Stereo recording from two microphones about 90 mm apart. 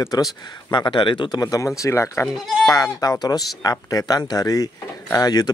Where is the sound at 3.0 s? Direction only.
40° left (ahead or behind).